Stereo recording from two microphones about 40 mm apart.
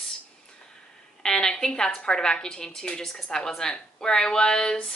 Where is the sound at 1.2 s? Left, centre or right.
Centre.